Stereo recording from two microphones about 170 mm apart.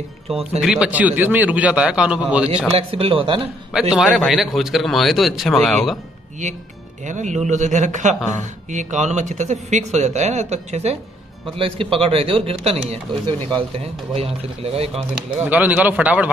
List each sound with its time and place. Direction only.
0.6 s a man's voice: 5° right (ahead or behind)
2.7 s a man's voice: 35° right (ahead or behind)
3.9 s speech: 5° right (ahead or behind)
7.1 s a man's voice: 45° right (ahead or behind)
15.0 s a man's voice: 5° right (ahead or behind)